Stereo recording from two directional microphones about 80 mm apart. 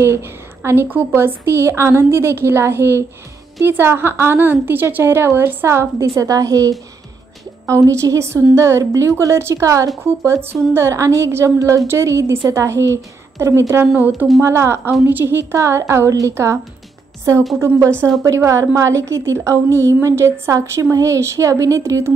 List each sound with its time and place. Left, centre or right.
0.0 s a woman's voice: right
17.6 s a woman's voice: right